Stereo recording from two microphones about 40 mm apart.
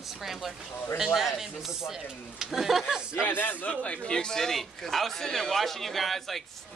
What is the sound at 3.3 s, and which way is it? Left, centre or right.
Speech, left.